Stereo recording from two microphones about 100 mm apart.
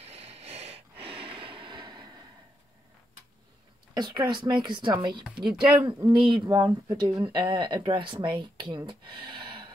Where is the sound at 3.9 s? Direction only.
45° right (ahead or behind).